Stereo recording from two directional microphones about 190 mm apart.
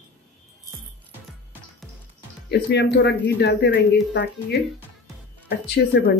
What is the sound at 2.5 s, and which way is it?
Speech, 60° left (ahead or behind).